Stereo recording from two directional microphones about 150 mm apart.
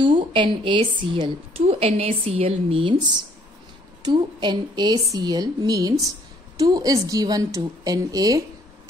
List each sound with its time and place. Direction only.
0.0 s a woman's voice: 35° right (ahead or behind)